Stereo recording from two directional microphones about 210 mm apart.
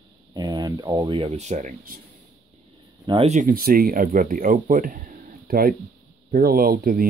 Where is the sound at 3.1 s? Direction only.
30° right (ahead or behind).